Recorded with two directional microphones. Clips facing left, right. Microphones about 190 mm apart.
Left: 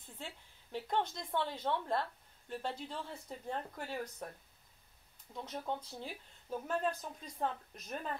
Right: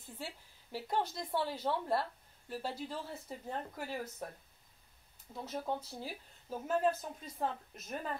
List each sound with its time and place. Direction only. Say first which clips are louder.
0.0 s a woman's voice: right 3 dB; 5° right (ahead or behind)
5.3 s speech: right 2 dB; 5° right (ahead or behind)